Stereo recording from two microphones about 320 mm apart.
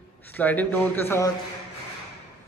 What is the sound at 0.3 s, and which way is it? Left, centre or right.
Speech, centre.